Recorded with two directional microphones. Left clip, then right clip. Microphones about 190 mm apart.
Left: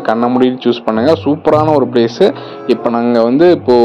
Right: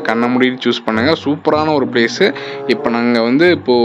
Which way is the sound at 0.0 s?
Centre (ahead or behind).